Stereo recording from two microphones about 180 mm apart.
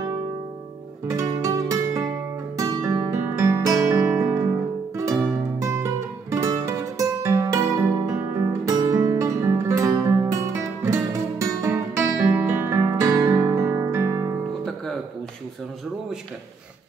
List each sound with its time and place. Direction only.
1.0 s music: 15° right (ahead or behind)